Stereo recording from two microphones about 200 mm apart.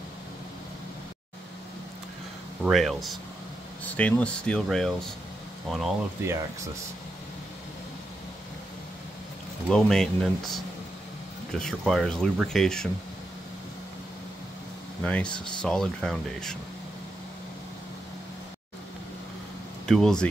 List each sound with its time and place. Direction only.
2.6 s speech: centre (ahead or behind)
9.7 s speech: centre (ahead or behind)
15.0 s speech: 5° left (ahead or behind)
19.9 s speech: 5° left (ahead or behind)